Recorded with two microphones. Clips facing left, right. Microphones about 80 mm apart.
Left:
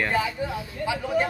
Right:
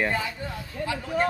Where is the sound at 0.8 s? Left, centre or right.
Centre.